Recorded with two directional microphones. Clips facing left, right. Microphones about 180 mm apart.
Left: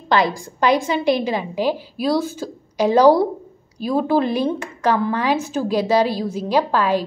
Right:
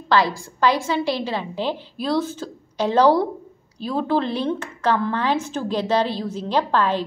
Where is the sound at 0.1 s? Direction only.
20° left (ahead or behind).